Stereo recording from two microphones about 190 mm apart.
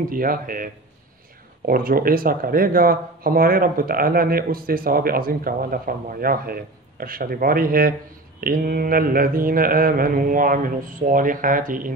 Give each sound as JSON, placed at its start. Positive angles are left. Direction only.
{"t": 0.1, "sound": "speech", "side_deg": -45}
{"t": 1.7, "sound": "speech", "side_deg": -50}